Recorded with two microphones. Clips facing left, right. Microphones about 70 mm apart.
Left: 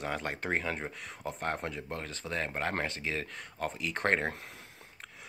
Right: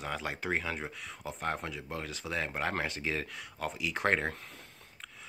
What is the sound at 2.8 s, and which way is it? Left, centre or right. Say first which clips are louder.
Speech: right 1 dB; centre.